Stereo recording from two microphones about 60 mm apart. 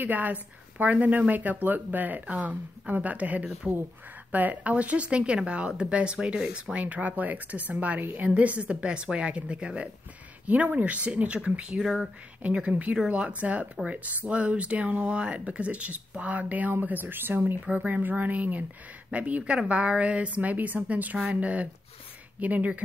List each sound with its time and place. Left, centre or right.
0.0 s speech: right
11.8 s speech: centre
12.5 s speech: right
17.6 s speech: right